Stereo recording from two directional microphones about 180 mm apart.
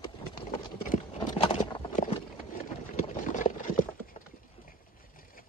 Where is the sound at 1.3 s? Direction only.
35° left (ahead or behind).